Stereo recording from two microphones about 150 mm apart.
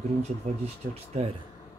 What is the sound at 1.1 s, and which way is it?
Speech, 50° right (ahead or behind).